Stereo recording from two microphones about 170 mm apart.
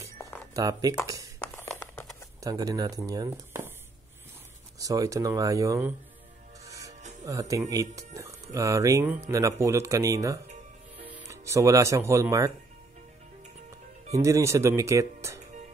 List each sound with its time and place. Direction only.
0.6 s speech: 20° right (ahead or behind)
1.0 s a sound: 20° right (ahead or behind)
1.8 s a sound: 5° left (ahead or behind)
2.4 s speech: 20° right (ahead or behind)
4.7 s speech: 20° right (ahead or behind)
7.2 s speech: 20° right (ahead or behind)
14.1 s speech: 15° right (ahead or behind)